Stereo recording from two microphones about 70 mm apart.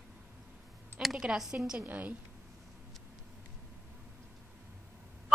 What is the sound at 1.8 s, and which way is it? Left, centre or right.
Speech, right.